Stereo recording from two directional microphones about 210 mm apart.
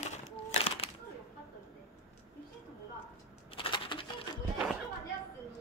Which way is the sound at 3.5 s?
25° left (ahead or behind).